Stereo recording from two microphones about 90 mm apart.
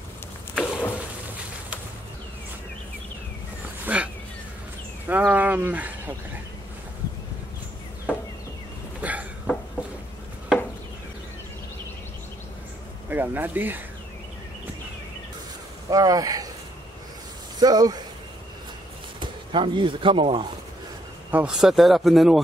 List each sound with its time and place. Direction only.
0.6 s a sound: 10° right (ahead or behind)
3.8 s dog: 15° right (ahead or behind)
5.0 s a sound: 20° right (ahead or behind)
9.0 s a sound: 15° right (ahead or behind)
13.1 s speech: 20° right (ahead or behind)
15.9 s speech: 40° right (ahead or behind)
17.6 s speech: 45° right (ahead or behind)
19.1 s speech: 70° right (ahead or behind)
21.3 s speech: 15° right (ahead or behind)
21.5 s speech: 5° right (ahead or behind)